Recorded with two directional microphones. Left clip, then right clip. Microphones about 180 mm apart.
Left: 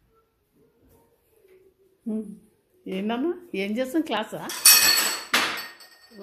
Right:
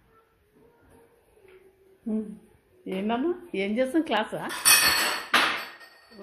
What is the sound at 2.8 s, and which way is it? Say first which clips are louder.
A woman's voice: even; 20° left (ahead or behind).